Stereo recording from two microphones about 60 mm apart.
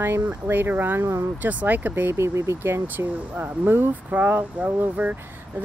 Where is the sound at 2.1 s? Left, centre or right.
Right.